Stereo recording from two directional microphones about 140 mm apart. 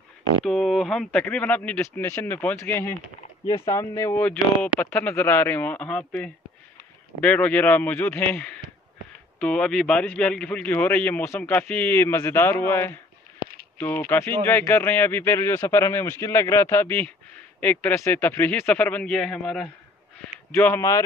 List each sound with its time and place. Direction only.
0.5 s a man's voice: centre (ahead or behind)
1.8 s a man's voice: 20° left (ahead or behind)
4.2 s a man's voice: 10° left (ahead or behind)
20.5 s a man's voice: 15° left (ahead or behind)